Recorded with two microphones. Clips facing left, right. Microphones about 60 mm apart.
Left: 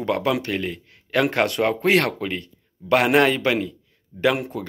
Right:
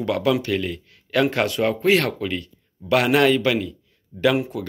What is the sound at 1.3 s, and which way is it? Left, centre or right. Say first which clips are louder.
A man's voice: left 1 dB; left.